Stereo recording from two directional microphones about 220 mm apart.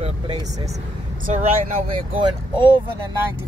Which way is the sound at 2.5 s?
20° right (ahead or behind).